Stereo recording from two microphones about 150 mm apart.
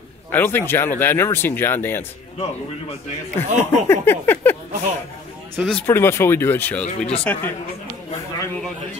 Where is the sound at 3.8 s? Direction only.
15° left (ahead or behind).